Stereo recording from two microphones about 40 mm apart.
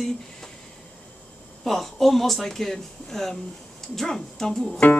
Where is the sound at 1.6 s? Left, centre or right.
Centre.